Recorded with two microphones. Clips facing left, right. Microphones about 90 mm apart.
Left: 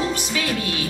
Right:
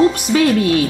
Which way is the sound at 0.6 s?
55° right (ahead or behind).